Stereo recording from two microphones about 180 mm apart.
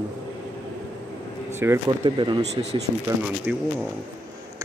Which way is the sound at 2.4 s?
35° right (ahead or behind).